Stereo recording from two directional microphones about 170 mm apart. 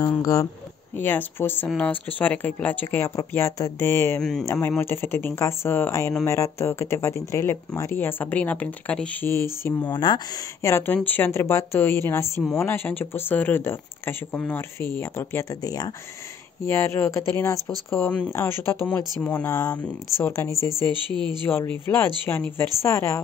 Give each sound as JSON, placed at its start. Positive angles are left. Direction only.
{"t": 0.0, "sound": "speech", "side_deg": 20}
{"t": 4.2, "sound": "speech", "side_deg": 5}
{"t": 4.5, "sound": "speech", "side_deg": 15}
{"t": 21.1, "sound": "speech", "side_deg": -25}
{"t": 21.5, "sound": "speech", "side_deg": 10}